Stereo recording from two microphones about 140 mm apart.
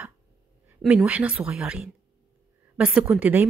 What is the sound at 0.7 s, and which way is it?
Speech, 10° right (ahead or behind).